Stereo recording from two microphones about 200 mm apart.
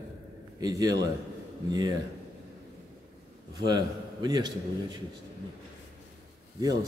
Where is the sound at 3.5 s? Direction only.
20° right (ahead or behind).